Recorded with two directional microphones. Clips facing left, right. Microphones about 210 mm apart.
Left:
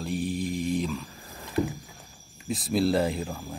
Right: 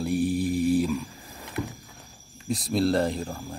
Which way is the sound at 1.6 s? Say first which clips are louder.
Left 5 dB; 30° left (ahead or behind).